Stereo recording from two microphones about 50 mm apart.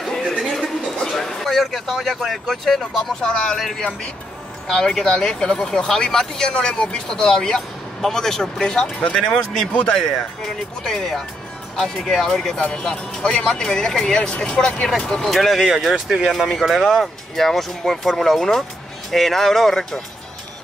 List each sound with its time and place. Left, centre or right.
0.0 s a sound: centre
3.5 s speech: centre
4.7 s speech: centre
15.2 s speech: centre